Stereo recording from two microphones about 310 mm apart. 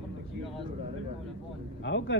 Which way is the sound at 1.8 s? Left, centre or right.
Left.